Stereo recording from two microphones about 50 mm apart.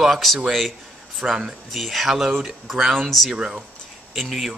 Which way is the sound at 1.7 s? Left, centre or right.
Centre.